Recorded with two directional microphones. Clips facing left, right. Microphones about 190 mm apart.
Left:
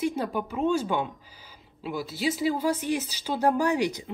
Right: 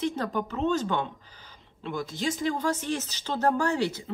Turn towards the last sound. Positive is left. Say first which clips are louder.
# left 2 dB
turn(degrees=15)  # may be behind; listen again after turning